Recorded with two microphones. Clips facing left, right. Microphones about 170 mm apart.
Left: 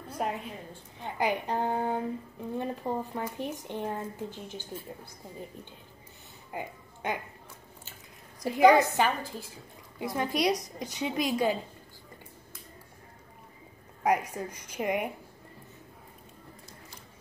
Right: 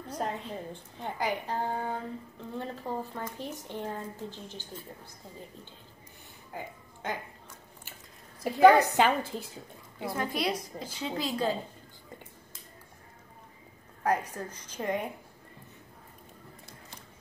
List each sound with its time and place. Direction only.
0.2 s a woman's voice: 10° left (ahead or behind)
6.5 s speech: 15° left (ahead or behind)
8.5 s a woman's voice: 15° left (ahead or behind)
8.8 s a woman's voice: 15° right (ahead or behind)
10.1 s a woman's voice: 20° left (ahead or behind)
14.0 s a woman's voice: 10° left (ahead or behind)